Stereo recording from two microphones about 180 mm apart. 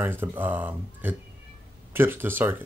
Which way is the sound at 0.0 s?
10° right (ahead or behind).